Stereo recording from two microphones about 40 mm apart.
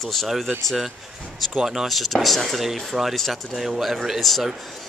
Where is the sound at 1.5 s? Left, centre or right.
Centre.